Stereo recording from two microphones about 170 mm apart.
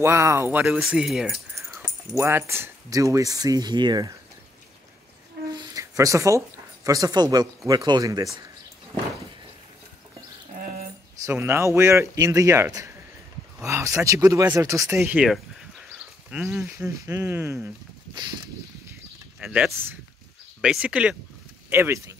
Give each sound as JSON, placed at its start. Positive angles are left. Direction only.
{"t": 0.0, "sound": "speech", "side_deg": -15}
{"t": 1.8, "sound": "speech", "side_deg": -15}
{"t": 5.5, "sound": "speech", "side_deg": -20}
{"t": 10.5, "sound": "a sound", "side_deg": -55}
{"t": 11.2, "sound": "speech", "side_deg": -15}
{"t": 19.4, "sound": "speech", "side_deg": -5}